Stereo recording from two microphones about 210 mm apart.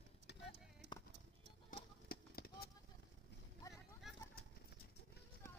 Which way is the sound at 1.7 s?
45° left (ahead or behind).